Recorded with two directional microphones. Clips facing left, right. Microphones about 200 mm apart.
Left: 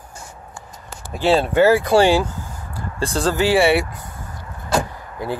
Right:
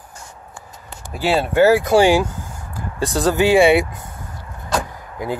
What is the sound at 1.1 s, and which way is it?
Speech, 5° right (ahead or behind).